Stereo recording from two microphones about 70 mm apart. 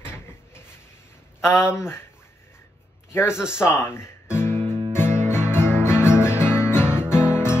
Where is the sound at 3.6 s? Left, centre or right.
Left.